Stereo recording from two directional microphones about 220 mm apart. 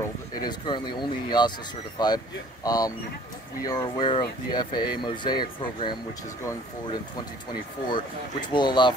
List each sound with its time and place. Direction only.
0.4 s speech: 20° left (ahead or behind)
7.9 s speech: 20° left (ahead or behind)